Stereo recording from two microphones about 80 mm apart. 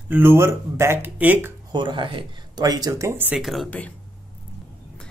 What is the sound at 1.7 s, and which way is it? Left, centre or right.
Speech, right.